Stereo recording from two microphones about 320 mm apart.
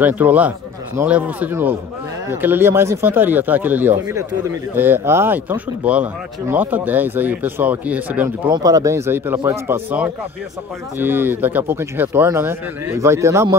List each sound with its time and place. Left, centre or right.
0.0 s speech: centre